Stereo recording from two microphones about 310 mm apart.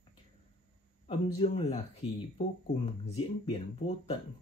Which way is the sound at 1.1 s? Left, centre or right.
Centre.